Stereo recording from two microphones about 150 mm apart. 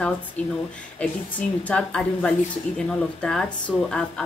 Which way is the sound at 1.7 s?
5° left (ahead or behind).